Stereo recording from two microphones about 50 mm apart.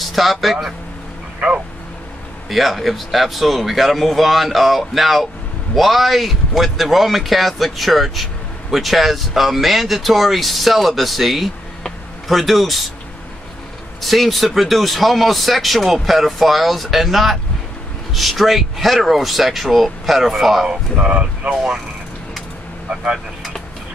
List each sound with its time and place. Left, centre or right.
0.0 s speech: centre
2.5 s speech: centre
14.0 s speech: centre
20.6 s speech: centre
21.1 s speech: right